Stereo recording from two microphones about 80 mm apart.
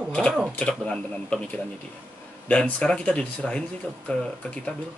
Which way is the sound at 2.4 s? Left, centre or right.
Centre.